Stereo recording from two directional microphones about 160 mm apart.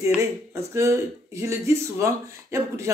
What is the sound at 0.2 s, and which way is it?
Speech, 20° right (ahead or behind).